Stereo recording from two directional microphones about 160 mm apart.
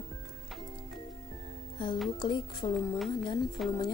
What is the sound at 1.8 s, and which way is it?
Speech, 30° left (ahead or behind).